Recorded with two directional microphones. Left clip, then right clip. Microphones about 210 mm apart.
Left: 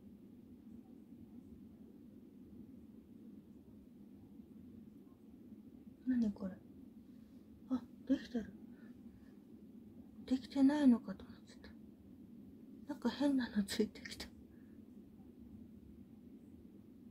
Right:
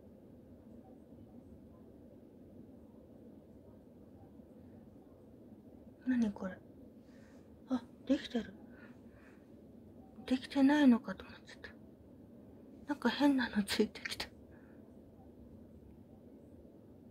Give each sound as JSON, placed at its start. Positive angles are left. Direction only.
{"t": 6.0, "sound": "speech", "side_deg": 15}
{"t": 7.6, "sound": "a sound", "side_deg": 15}
{"t": 10.2, "sound": "speech", "side_deg": 10}
{"t": 12.8, "sound": "speech", "side_deg": 10}